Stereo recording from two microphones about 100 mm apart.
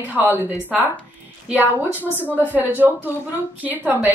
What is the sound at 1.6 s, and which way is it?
A woman's voice, 20° right (ahead or behind).